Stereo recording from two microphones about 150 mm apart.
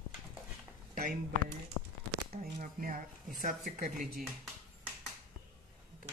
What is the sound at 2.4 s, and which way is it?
Speech, 70° right (ahead or behind).